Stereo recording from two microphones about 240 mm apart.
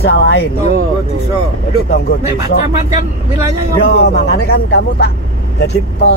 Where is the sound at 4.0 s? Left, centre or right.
Left.